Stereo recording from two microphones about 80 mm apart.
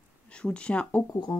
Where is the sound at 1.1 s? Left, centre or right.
Left.